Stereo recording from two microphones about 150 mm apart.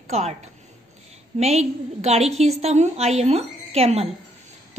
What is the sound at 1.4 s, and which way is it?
A woman's voice, 45° right (ahead or behind).